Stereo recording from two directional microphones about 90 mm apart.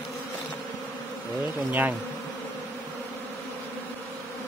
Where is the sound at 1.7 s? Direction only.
20° right (ahead or behind).